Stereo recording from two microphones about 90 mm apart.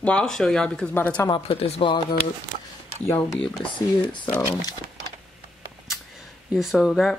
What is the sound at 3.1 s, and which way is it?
Speech, 10° left (ahead or behind).